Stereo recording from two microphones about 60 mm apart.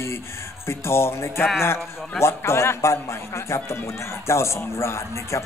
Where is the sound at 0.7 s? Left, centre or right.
Left.